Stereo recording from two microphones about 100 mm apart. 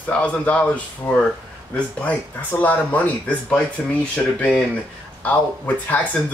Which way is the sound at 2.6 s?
15° left (ahead or behind).